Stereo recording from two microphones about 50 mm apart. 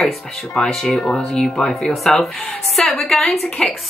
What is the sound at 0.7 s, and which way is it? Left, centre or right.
A woman's voice, centre.